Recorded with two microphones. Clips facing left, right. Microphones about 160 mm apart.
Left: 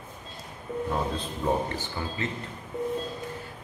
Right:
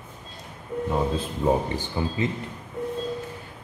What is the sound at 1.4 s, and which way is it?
Speech, 10° right (ahead or behind).